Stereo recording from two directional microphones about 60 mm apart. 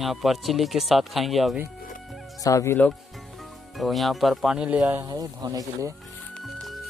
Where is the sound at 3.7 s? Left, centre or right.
Centre.